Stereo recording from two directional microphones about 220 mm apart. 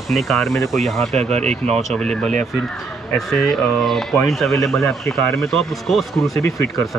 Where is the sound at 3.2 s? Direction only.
Centre (ahead or behind).